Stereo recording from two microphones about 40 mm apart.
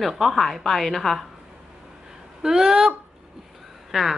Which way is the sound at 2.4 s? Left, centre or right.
Centre.